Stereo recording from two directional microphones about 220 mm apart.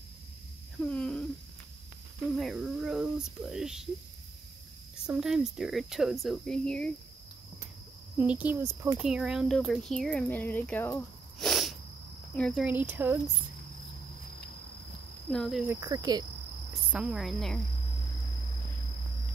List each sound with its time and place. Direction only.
0.8 s a sound: 5° left (ahead or behind)
2.3 s speech: centre (ahead or behind)
5.0 s speech: centre (ahead or behind)
8.2 s speech: 5° right (ahead or behind)
15.3 s speech: centre (ahead or behind)
15.7 s speech: 15° right (ahead or behind)
16.9 s speech: 5° right (ahead or behind)